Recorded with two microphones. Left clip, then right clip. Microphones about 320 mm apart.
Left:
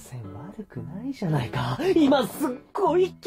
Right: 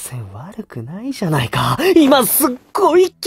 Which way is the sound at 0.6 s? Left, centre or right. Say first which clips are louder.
Right 10 dB; right.